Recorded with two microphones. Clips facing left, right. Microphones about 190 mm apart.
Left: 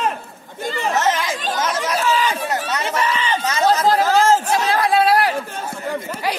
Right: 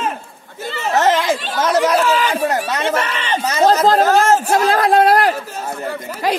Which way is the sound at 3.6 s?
45° right (ahead or behind).